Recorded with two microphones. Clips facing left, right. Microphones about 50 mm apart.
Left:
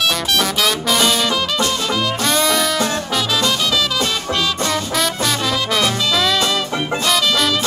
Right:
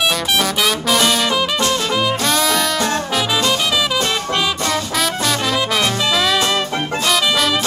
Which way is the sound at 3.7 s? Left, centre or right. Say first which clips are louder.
Right 1 dB; centre.